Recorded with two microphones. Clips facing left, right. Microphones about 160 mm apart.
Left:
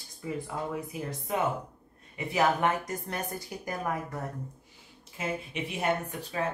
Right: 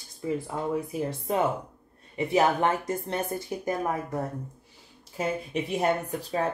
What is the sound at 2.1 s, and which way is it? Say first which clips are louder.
Speech: right 4 dB; 30° right (ahead or behind).